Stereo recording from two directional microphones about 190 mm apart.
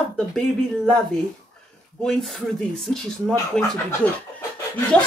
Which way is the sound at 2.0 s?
Centre (ahead or behind).